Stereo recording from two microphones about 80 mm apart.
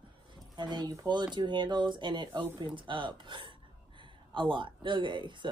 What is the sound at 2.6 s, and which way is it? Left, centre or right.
Speech, right.